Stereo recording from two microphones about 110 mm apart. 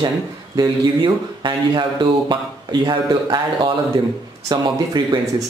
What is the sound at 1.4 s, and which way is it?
Speech, 40° right (ahead or behind).